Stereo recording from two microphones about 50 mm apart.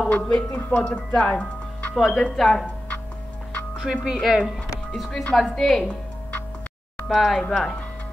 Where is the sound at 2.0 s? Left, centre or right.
Centre.